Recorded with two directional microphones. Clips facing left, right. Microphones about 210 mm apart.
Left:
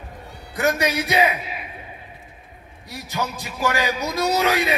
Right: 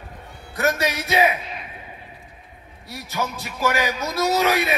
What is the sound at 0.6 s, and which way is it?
Speech, 15° left (ahead or behind).